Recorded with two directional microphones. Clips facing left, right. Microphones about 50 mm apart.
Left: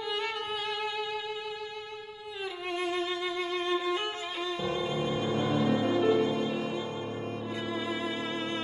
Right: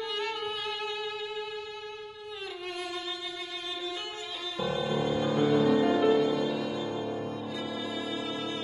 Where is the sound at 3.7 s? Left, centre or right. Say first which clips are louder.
Left 6 dB; left.